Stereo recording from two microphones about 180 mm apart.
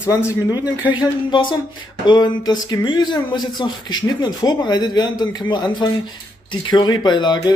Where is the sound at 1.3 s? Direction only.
25° left (ahead or behind).